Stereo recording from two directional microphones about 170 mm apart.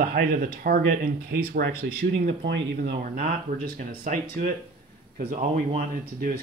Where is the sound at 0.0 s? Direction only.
60° right (ahead or behind).